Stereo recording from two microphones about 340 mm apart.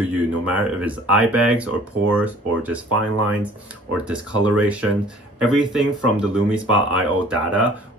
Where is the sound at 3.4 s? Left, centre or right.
Centre.